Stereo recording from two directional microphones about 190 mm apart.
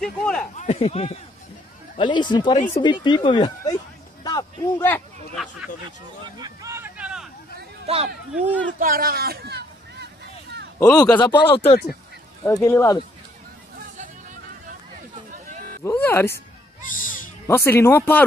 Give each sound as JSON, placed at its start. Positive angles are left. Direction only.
{"t": 0.0, "sound": "speech", "side_deg": 5}
{"t": 0.6, "sound": "speech", "side_deg": 35}
{"t": 4.2, "sound": "a sound", "side_deg": 20}
{"t": 6.2, "sound": "a sound", "side_deg": -20}
{"t": 7.8, "sound": "speech", "side_deg": -35}
{"t": 8.7, "sound": "speech", "side_deg": -50}
{"t": 10.8, "sound": "speech", "side_deg": 20}
{"t": 12.6, "sound": "speech", "side_deg": 15}
{"t": 15.8, "sound": "speech", "side_deg": 10}
{"t": 16.9, "sound": "a sound", "side_deg": 45}
{"t": 17.5, "sound": "speech", "side_deg": 15}